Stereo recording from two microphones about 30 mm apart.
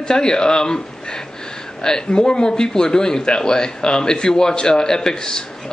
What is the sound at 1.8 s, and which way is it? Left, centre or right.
Speech, left.